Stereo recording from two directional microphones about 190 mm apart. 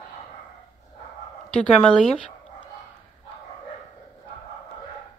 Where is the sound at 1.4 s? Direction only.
5° left (ahead or behind).